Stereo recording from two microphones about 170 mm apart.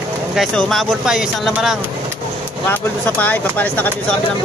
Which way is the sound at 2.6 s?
10° left (ahead or behind).